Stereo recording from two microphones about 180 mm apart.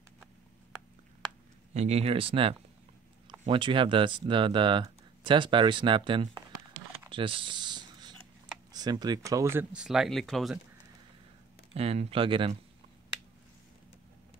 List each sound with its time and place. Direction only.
1.7 s speech: 40° right (ahead or behind)
7.1 s typing: 30° right (ahead or behind)
8.7 s speech: 20° right (ahead or behind); by 10.6 s centre (ahead or behind)
11.7 s speech: 35° right (ahead or behind)